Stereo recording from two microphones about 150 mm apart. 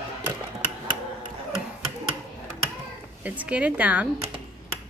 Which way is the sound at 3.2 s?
10° right (ahead or behind).